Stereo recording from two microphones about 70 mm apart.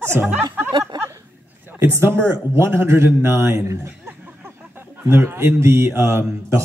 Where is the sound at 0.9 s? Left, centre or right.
Right.